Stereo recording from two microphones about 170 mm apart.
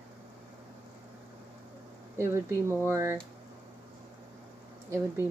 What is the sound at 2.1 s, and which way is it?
Speech, 15° right (ahead or behind).